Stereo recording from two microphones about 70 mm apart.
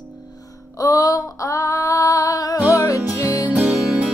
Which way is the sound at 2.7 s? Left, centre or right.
Left.